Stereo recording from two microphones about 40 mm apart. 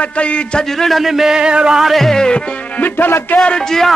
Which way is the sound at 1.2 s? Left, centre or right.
Right.